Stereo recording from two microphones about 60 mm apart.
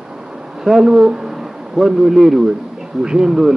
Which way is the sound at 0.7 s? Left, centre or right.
Centre.